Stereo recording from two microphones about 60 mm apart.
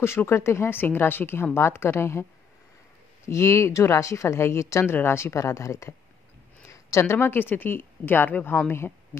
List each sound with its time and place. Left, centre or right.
0.0 s a woman's voice: left
3.3 s a woman's voice: left
4.9 s a woman's voice: left